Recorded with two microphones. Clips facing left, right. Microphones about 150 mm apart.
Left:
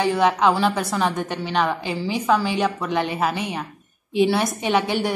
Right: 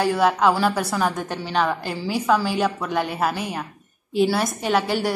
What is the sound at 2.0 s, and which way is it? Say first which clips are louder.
A woman's voice: even; 5° right (ahead or behind).